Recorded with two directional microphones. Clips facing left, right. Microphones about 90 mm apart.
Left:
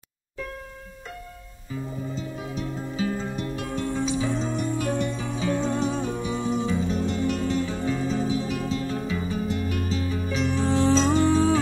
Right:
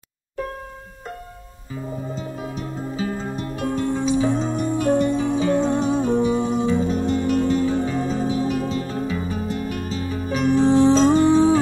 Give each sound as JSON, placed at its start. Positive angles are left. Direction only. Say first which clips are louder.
{"t": 2.1, "sound": "music", "louder": "right 2 dB", "side_deg": -40}
{"t": 5.7, "sound": "music", "louder": "right 6 dB", "side_deg": -15}
{"t": 6.4, "sound": "music", "louder": "right 5 dB", "side_deg": -50}
{"t": 10.7, "sound": "music", "louder": "right 5 dB", "side_deg": -15}